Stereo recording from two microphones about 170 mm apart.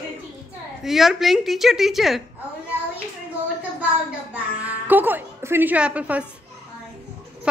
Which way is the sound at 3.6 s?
10° right (ahead or behind).